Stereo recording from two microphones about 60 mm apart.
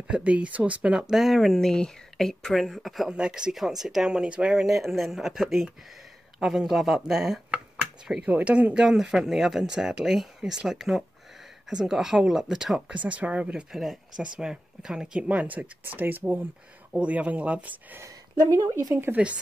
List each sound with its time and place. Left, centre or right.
0.1 s speech: centre
1.1 s speech: centre
3.1 s speech: centre
8.3 s speech: right
12.9 s speech: right
16.9 s speech: right
18.0 s a woman's voice: right